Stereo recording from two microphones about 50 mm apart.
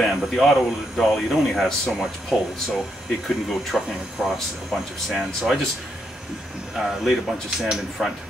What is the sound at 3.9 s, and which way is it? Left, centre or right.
Speech, centre.